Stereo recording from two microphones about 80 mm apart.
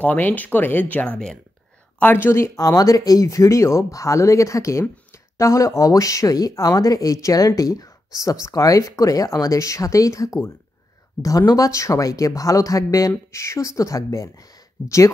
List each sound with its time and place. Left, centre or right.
0.0 s speech: left
2.0 s a woman's voice: left